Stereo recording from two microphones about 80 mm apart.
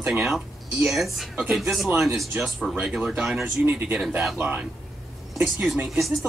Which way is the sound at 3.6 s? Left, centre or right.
Right.